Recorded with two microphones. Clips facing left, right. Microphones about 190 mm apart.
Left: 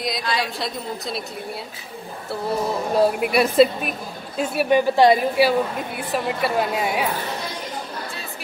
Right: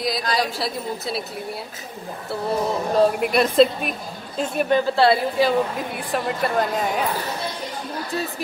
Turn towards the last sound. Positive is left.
turn(degrees=10)  # may be behind; listen again after turning